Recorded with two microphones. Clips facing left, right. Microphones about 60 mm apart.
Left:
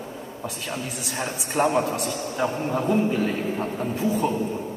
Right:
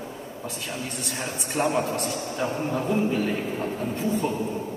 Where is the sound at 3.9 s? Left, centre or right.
Centre.